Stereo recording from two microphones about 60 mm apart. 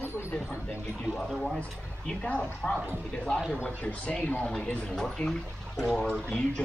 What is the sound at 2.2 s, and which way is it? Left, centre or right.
Speech, centre.